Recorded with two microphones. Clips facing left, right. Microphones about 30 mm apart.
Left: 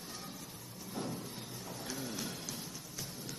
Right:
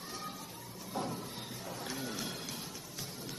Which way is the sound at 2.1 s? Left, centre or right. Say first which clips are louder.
Right 1 dB; right.